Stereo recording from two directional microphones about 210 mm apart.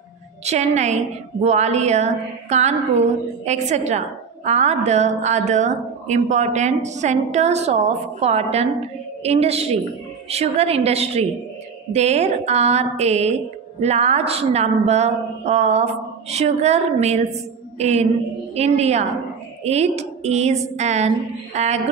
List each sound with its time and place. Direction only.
0.5 s a woman's voice: 35° right (ahead or behind)
17.7 s a sound: 30° right (ahead or behind)
18.5 s a woman's voice: 30° right (ahead or behind)